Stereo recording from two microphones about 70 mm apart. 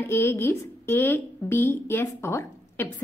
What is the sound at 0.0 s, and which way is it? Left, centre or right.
A woman's voice, left.